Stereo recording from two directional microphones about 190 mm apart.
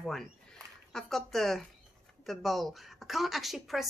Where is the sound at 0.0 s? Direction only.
Centre (ahead or behind).